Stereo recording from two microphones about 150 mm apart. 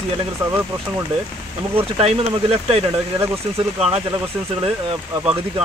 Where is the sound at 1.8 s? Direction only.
40° right (ahead or behind).